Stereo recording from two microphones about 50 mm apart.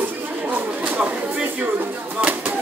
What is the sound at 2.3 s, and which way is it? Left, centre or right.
Music, right.